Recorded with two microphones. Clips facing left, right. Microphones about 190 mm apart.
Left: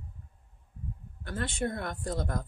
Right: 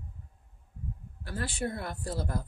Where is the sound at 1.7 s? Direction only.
30° right (ahead or behind).